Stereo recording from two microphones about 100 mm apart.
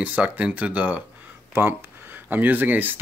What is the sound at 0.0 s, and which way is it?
Speech, 15° right (ahead or behind).